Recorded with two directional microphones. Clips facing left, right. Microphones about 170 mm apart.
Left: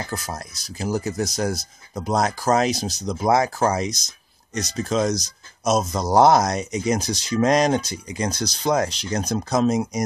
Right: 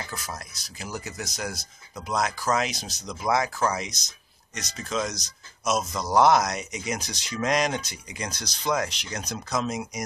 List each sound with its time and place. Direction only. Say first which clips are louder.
0.1 s speech: left 6 dB; 35° left (ahead or behind)